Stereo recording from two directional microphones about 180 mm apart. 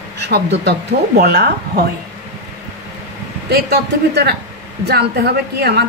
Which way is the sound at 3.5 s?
65° right (ahead or behind).